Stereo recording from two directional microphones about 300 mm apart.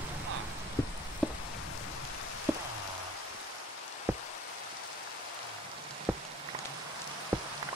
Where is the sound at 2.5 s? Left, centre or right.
Centre.